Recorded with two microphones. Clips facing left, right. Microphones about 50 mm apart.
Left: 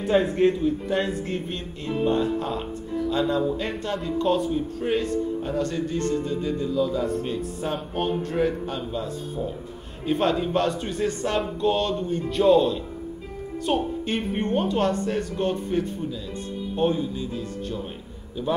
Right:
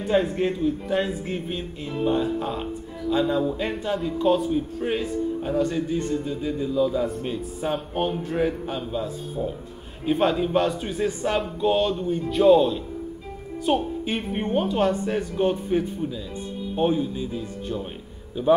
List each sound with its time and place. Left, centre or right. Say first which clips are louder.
0.0 s speech: left 2 dB; centre